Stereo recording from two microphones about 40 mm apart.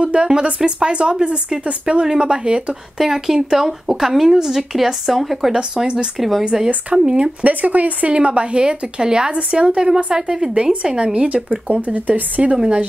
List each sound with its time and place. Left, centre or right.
0.0 s a woman's voice: right
3.0 s speech: centre
5.5 s a woman's voice: right
6.1 s speech: centre
6.4 s a woman's voice: centre
7.4 s a woman's voice: right; by 10.5 s centre
10.5 s a woman's voice: right